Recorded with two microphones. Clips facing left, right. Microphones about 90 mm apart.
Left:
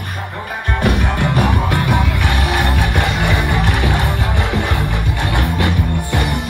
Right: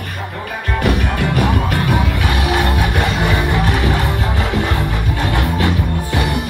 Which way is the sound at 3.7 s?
20° left (ahead or behind).